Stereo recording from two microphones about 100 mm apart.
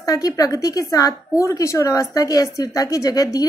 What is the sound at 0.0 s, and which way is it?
A woman's voice, 35° left (ahead or behind).